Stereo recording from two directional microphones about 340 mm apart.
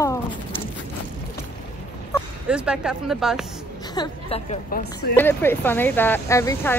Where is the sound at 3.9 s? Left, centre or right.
Centre.